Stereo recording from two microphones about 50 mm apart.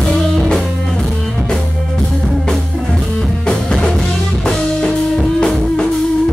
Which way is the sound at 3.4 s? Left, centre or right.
Centre.